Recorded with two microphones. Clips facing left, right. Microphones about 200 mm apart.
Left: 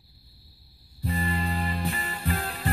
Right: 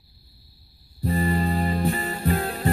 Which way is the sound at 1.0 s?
40° right (ahead or behind).